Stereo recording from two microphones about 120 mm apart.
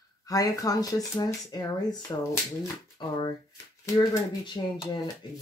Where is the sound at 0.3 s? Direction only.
30° left (ahead or behind).